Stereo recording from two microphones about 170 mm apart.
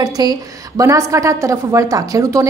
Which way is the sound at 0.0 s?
20° right (ahead or behind).